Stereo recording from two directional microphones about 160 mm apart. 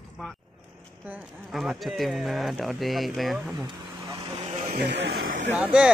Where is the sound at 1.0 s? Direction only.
5° right (ahead or behind).